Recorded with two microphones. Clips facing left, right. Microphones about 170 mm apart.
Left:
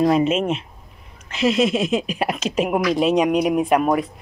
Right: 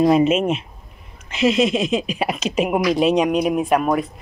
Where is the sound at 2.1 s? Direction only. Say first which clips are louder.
Right 1 dB; 10° right (ahead or behind).